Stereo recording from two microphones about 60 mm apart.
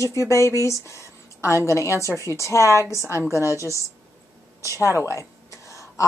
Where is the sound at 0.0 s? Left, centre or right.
Left.